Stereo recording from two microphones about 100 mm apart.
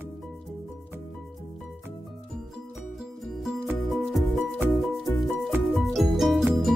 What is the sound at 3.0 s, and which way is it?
Music, 5° right (ahead or behind).